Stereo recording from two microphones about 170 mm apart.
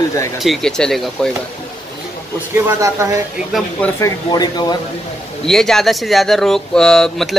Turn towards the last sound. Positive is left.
turn(degrees=5)  # may be behind; listen again after turning